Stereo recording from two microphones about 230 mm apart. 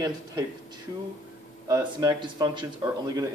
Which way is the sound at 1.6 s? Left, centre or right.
Centre.